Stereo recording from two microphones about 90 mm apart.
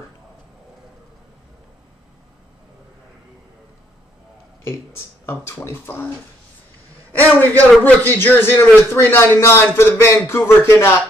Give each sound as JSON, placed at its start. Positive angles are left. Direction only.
{"t": 5.2, "sound": "a man's voice", "side_deg": 25}